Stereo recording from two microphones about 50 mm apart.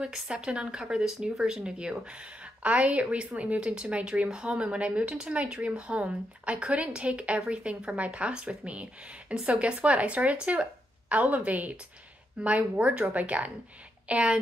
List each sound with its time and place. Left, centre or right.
0.0 s a woman's voice: centre